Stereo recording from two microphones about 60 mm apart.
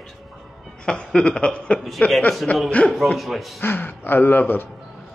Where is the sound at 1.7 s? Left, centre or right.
Centre.